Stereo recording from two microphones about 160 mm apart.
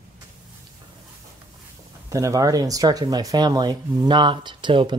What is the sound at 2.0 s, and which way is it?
Speech, 20° right (ahead or behind).